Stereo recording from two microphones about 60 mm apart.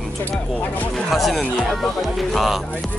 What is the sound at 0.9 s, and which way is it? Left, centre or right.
Speech, centre.